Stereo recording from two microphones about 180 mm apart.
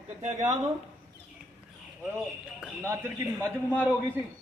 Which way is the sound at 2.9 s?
10° right (ahead or behind).